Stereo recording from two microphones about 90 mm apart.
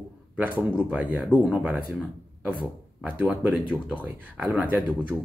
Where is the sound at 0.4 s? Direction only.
20° right (ahead or behind).